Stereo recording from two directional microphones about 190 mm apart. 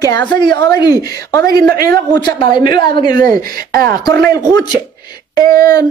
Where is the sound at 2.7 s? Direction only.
25° left (ahead or behind).